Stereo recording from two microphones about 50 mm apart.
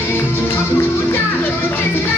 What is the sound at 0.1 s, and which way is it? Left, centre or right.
Music, left.